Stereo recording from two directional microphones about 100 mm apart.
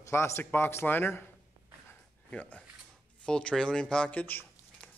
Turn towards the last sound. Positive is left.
turn(degrees=15)  # may be behind; listen again after turning